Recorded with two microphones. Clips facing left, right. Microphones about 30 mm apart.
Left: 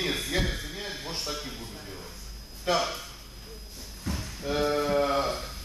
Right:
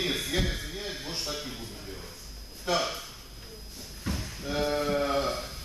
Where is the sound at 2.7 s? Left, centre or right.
Centre.